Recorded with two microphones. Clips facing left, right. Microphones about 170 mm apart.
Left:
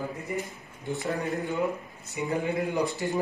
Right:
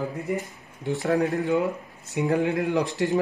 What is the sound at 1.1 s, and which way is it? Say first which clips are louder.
Speech: right 8 dB; 90° right.